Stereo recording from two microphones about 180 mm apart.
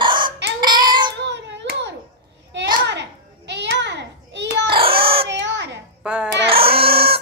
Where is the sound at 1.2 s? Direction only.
80° right.